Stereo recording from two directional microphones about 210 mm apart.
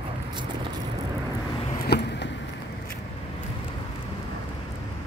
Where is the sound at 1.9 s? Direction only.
55° left (ahead or behind).